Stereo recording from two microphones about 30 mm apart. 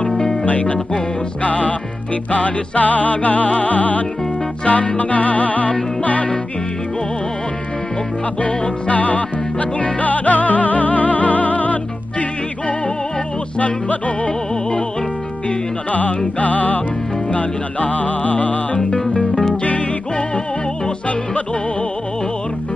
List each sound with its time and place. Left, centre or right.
0.1 s music: centre
0.5 s music: left
8.8 s music: left
15.9 s music: left
17.3 s music: left
18.8 s music: centre
19.6 s music: left